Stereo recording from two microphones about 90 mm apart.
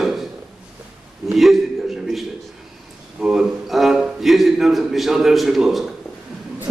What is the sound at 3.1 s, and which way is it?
A man's voice, 5° right (ahead or behind).